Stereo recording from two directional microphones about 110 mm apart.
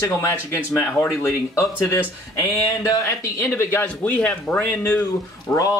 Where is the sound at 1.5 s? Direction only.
30° left (ahead or behind); by 4.6 s 10° left (ahead or behind).